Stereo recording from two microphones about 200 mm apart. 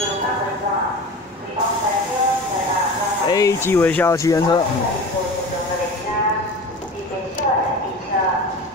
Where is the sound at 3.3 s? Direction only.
15° left (ahead or behind).